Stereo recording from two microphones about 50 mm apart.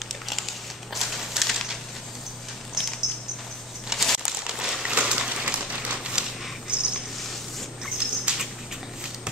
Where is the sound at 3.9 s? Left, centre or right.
Centre.